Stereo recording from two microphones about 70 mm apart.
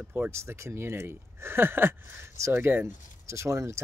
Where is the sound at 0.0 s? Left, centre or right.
Right.